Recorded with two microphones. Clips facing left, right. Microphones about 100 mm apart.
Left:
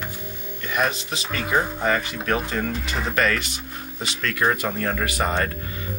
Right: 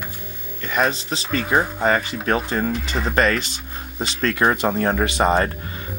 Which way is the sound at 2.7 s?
Centre (ahead or behind).